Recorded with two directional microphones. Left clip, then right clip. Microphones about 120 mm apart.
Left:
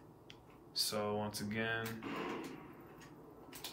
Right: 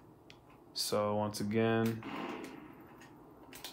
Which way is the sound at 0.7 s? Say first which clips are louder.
Right 4 dB; 60° right (ahead or behind).